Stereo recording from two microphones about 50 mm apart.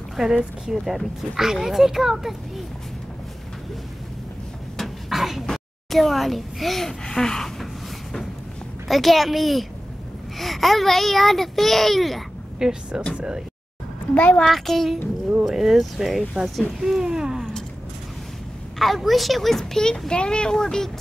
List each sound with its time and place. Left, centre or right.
0.1 s a sound: centre
0.7 s speech: centre
4.7 s a sound: centre
5.5 s a child's voice: centre
8.8 s speech: centre
12.5 s speech: centre
14.1 s a woman's voice: left
14.4 s speech: centre
16.8 s a sound: centre
18.8 s speech: centre
19.6 s speech: centre